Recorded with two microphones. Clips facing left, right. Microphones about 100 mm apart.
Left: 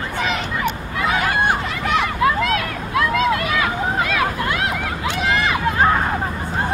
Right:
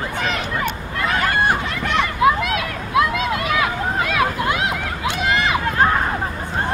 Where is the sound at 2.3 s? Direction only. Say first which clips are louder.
Right 1 dB; 20° right (ahead or behind).